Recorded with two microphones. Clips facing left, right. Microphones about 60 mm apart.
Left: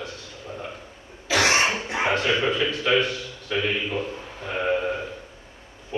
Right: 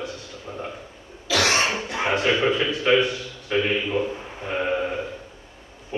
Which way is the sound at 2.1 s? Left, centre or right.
Right.